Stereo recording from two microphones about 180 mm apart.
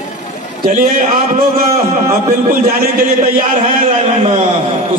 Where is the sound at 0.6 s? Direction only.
50° right (ahead or behind).